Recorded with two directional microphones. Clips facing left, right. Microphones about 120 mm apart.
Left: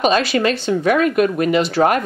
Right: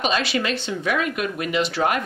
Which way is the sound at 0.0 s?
45° left (ahead or behind).